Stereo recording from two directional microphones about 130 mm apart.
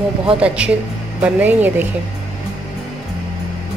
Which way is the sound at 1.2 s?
15° right (ahead or behind).